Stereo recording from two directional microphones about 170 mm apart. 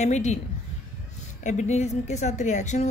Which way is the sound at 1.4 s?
45° left (ahead or behind).